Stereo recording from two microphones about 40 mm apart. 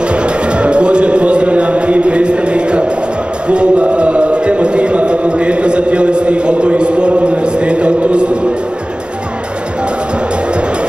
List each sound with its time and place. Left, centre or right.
0.1 s music: right